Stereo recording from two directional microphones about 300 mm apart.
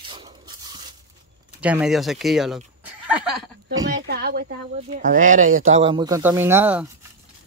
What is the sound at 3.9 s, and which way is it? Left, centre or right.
Speech, right.